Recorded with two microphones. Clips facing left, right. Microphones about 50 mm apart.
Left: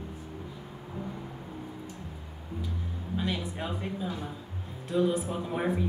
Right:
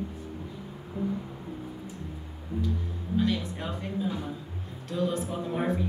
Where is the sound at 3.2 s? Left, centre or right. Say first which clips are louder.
Right 4 dB; centre.